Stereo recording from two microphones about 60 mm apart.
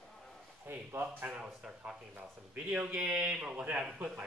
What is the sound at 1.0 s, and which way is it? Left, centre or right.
A man's voice, centre.